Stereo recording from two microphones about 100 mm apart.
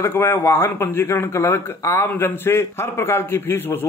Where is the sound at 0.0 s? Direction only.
20° left (ahead or behind).